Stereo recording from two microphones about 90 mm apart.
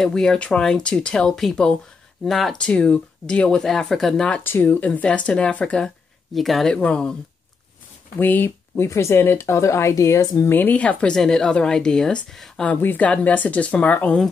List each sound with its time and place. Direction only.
0.0 s speech: 5° left (ahead or behind)
4.4 s speech: 25° left (ahead or behind)
6.3 s speech: centre (ahead or behind)
6.8 s speech: 15° left (ahead or behind)
8.2 s speech: 20° left (ahead or behind)
8.8 s speech: 30° left (ahead or behind); by 14.1 s 15° left (ahead or behind)